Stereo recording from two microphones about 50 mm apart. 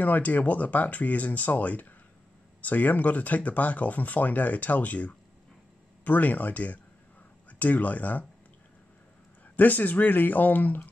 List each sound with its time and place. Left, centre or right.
0.0 s speech: left
9.6 s speech: left